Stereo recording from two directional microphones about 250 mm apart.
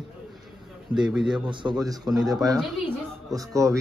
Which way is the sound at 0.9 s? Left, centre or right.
Centre.